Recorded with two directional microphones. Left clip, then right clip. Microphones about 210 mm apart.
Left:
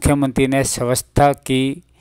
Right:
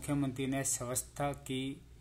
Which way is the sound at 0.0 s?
45° left (ahead or behind).